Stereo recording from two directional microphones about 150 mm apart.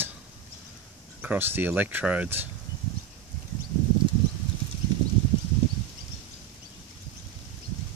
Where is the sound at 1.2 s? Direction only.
10° right (ahead or behind).